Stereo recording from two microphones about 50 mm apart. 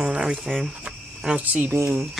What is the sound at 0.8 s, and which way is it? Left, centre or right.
Cricket, centre.